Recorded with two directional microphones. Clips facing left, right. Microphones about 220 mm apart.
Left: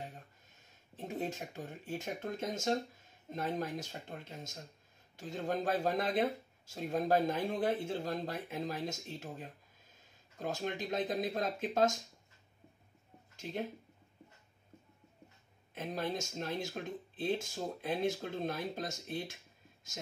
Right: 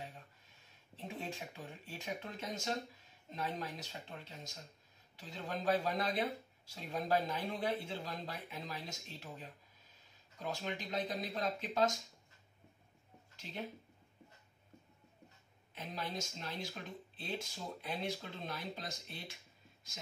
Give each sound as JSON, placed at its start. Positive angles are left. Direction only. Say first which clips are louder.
{"t": 0.9, "sound": "speech", "louder": "left 6 dB", "side_deg": 45}
{"t": 13.4, "sound": "speech", "louder": "left 6 dB", "side_deg": 45}
{"t": 15.7, "sound": "speech", "louder": "left 6 dB", "side_deg": 50}